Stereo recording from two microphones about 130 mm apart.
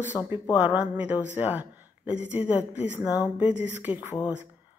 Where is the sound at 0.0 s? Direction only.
15° right (ahead or behind).